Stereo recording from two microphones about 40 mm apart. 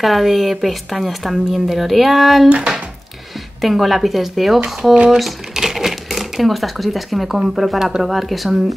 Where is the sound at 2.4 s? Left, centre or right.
Right.